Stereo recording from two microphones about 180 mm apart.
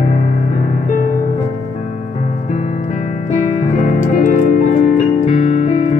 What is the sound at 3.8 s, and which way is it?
Music, 45° left (ahead or behind).